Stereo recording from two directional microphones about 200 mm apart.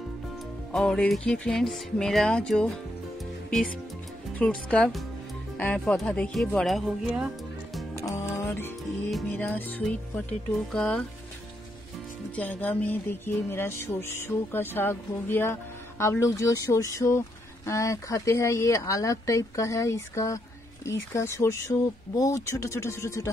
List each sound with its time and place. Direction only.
0.7 s speech: 5° left (ahead or behind)
4.4 s speech: 5° left (ahead or behind)
8.0 s music: 15° left (ahead or behind)
10.7 s speech: 5° left (ahead or behind)
12.4 s speech: 10° left (ahead or behind)